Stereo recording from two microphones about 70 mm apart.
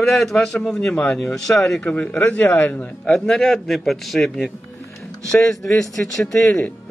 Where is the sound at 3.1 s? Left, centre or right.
Centre.